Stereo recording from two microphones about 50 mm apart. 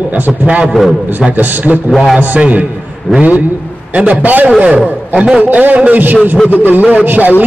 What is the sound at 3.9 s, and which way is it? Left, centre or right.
Speech, right.